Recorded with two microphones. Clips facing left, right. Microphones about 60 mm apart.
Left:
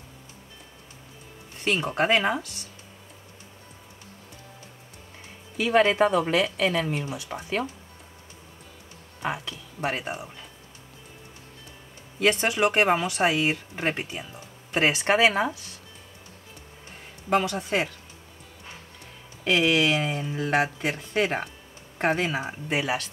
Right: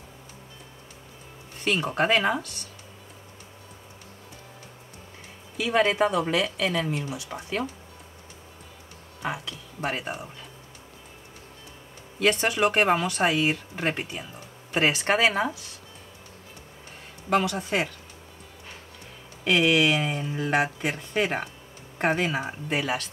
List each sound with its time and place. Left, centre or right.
1.6 s speech: centre
5.7 s speech: centre
6.5 s speech: centre
7.4 s speech: centre
9.8 s speech: centre
12.2 s speech: centre
15.0 s speech: left
17.3 s speech: centre
19.4 s speech: centre